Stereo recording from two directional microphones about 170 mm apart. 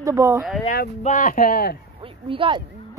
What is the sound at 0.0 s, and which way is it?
Speech, 20° right (ahead or behind).